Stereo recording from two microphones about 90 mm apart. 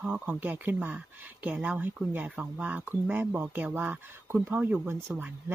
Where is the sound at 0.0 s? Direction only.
15° right (ahead or behind).